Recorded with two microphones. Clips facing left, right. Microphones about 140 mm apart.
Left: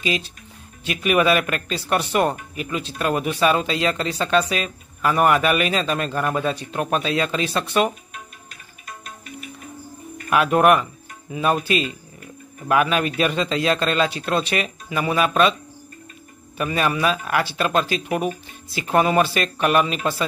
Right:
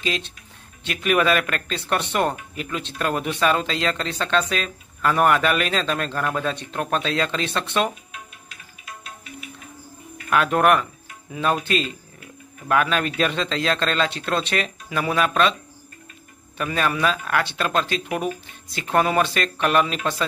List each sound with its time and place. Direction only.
0.0 s speech: 5° left (ahead or behind)
8.1 s music: 45° left (ahead or behind)
10.3 s speech: 10° left (ahead or behind)
16.5 s speech: 5° left (ahead or behind)